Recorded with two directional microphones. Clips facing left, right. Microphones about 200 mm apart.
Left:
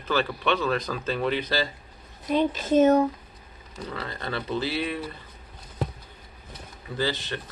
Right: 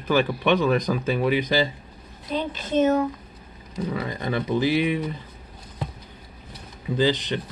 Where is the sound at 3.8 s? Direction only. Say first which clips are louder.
Right 5 dB; 15° right (ahead or behind).